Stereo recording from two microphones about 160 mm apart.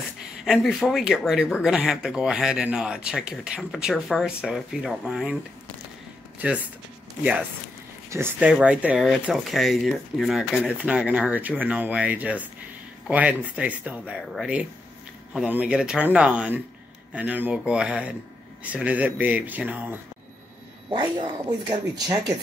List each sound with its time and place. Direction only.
0.5 s speech: centre (ahead or behind)
8.1 s speech: 10° right (ahead or behind)
20.9 s speech: 25° right (ahead or behind)